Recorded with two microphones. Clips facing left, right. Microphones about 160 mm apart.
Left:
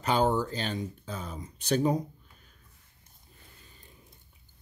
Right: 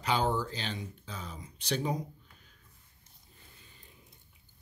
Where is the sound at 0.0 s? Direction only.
45° left (ahead or behind).